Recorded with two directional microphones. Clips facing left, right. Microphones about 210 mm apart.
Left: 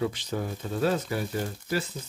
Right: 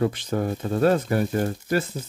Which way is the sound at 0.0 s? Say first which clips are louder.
Right 6 dB; 50° right (ahead or behind).